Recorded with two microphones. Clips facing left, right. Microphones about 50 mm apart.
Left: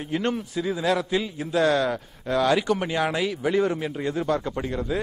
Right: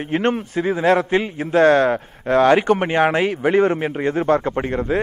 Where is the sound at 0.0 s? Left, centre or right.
Right.